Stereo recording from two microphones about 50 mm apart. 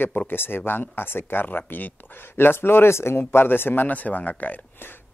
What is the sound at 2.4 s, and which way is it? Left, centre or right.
Speech, left.